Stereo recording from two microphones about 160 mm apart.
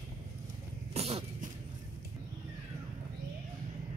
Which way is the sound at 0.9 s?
40° right (ahead or behind).